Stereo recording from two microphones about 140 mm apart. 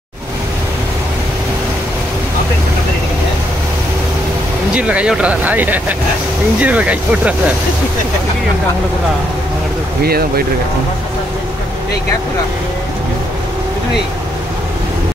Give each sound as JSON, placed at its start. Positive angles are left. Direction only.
{"t": 4.7, "sound": "speech", "side_deg": -5}
{"t": 10.0, "sound": "speech", "side_deg": -90}